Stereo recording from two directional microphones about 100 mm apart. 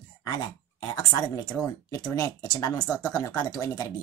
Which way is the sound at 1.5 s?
10° left (ahead or behind).